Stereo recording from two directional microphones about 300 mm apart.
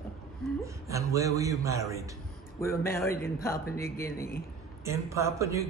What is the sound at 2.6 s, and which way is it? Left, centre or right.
A man's voice, centre.